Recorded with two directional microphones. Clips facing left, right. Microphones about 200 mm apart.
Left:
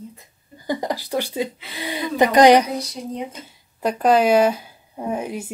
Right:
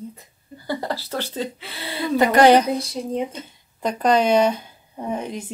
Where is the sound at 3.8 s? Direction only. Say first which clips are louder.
Left 2 dB; 5° left (ahead or behind).